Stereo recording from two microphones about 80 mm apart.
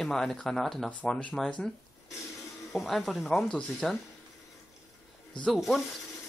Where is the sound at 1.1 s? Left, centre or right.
Centre.